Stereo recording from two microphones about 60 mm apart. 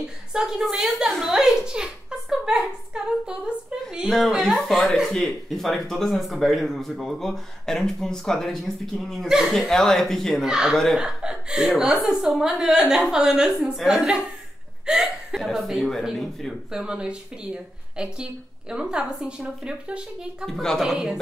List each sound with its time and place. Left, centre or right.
0.3 s a woman's voice: centre
4.1 s speech: centre
10.4 s speech: centre
15.4 s speech: centre
16.7 s speech: centre
20.6 s speech: centre